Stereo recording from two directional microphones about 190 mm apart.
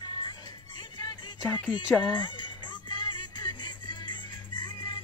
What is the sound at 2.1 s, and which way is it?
Music, 25° left (ahead or behind).